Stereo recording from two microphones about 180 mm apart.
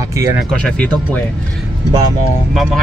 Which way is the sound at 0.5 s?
5° left (ahead or behind).